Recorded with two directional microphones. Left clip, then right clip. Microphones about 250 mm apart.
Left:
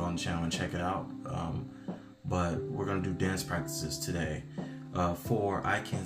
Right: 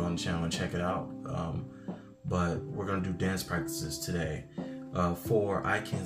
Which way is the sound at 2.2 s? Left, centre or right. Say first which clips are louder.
Even; centre.